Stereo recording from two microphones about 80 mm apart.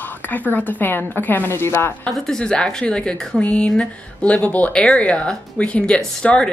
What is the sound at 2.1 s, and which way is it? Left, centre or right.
Speech, centre.